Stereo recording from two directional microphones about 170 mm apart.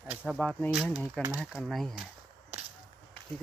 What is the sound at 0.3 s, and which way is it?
Speech, 5° left (ahead or behind).